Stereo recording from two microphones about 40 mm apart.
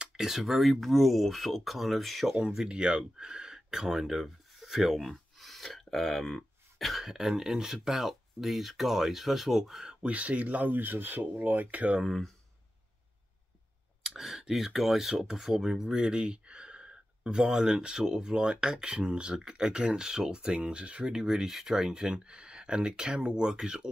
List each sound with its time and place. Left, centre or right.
0.1 s speech: centre
2.4 s speech: centre
4.1 s speech: centre
6.8 s speech: centre
7.1 s speech: centre
10.0 s speech: right
12.0 s speech: centre
14.0 s clicking: centre
14.5 s speech: centre
22.2 s speech: right